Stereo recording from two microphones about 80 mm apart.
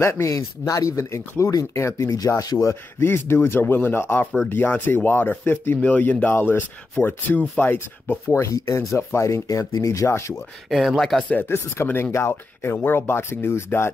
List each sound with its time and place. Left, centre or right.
0.0 s speech: left
0.3 s speech: left
2.1 s speech: left
2.7 s speech: left
10.7 s speech: centre
11.1 s speech: centre
11.4 s speech: left